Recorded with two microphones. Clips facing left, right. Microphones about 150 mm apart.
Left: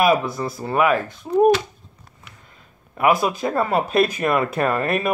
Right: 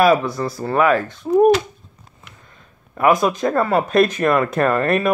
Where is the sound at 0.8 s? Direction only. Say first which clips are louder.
Right 2 dB; centre (ahead or behind).